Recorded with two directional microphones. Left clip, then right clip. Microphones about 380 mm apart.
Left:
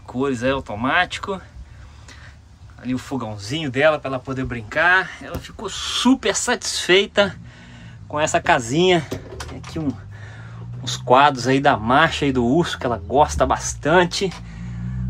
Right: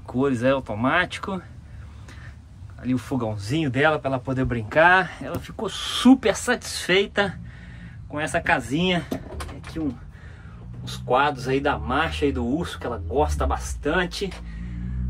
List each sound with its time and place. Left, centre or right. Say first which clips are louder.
0.1 s speech: even; centre
2.8 s speech: even; centre
10.8 s speech: left 7 dB; centre